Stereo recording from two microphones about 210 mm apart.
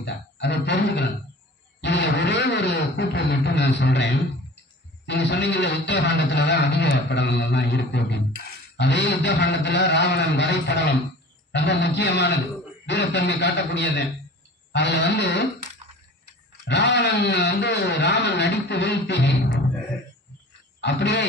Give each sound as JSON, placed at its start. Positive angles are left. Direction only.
{"t": 0.0, "sound": "speech", "side_deg": 55}
{"t": 16.6, "sound": "speech", "side_deg": 55}
{"t": 20.8, "sound": "speech", "side_deg": 55}